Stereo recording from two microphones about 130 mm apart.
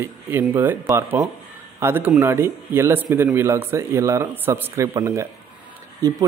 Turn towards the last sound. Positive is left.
turn(degrees=-25)  # may be behind; listen again after turning